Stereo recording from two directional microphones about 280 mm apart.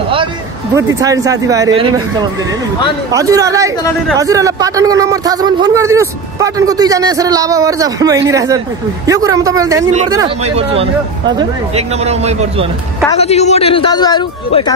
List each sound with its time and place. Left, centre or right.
0.7 s a man's voice: centre
3.1 s a man's voice: centre
13.2 s speech: left